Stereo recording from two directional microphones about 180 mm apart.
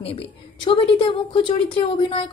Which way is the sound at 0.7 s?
30° left (ahead or behind).